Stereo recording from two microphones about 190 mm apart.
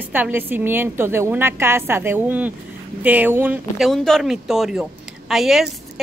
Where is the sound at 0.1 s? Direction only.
10° right (ahead or behind).